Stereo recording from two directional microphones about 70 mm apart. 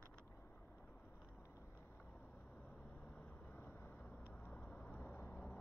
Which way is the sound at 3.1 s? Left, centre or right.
Left.